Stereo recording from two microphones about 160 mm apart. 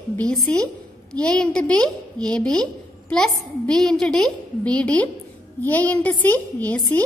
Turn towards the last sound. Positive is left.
turn(degrees=10)  # may be behind; listen again after turning